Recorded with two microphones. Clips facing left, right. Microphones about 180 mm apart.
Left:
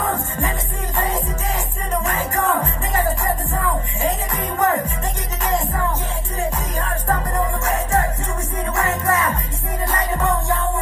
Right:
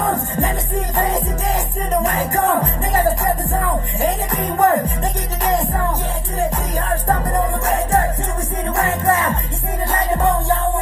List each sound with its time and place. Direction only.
0.0 s music: 35° right (ahead or behind)
4.3 s music: 35° right (ahead or behind)
7.1 s music: 35° right (ahead or behind)